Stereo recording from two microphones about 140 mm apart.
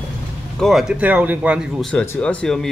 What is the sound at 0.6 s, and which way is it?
Speech, centre (ahead or behind).